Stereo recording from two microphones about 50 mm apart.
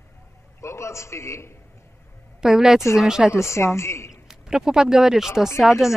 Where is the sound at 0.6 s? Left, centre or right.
Left.